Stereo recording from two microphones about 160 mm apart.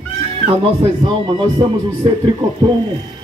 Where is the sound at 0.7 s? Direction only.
35° right (ahead or behind).